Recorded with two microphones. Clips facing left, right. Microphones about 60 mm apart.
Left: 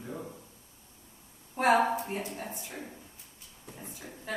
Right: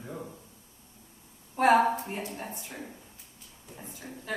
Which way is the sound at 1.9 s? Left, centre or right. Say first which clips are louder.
Left 1 dB; centre.